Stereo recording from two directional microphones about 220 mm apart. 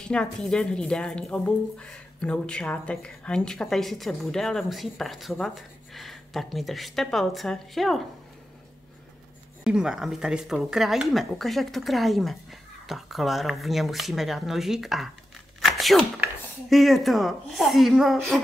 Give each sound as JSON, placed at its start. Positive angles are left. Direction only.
{"t": 0.1, "sound": "speech", "side_deg": 5}
{"t": 9.7, "sound": "speech", "side_deg": -5}